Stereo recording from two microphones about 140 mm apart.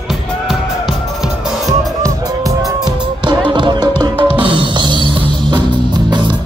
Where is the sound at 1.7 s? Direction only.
25° right (ahead or behind).